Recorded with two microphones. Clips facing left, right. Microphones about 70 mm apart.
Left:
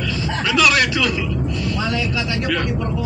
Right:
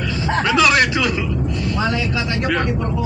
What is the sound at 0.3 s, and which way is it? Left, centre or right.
Speech, right.